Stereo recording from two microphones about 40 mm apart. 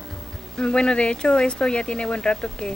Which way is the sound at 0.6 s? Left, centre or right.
Left.